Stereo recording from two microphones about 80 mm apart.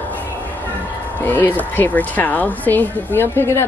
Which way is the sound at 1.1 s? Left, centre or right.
Left.